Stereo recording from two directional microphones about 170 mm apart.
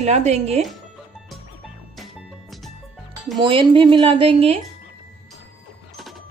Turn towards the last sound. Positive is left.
turn(degrees=-35)  # may be behind; listen again after turning